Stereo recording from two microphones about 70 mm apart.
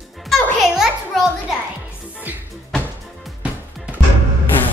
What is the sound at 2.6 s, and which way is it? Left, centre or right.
Music, centre.